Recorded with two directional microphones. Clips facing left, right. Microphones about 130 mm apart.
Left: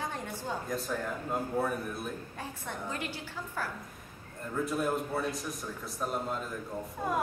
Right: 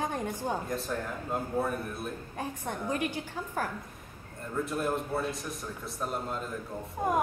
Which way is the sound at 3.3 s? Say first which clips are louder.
Right 4 dB; 45° right (ahead or behind).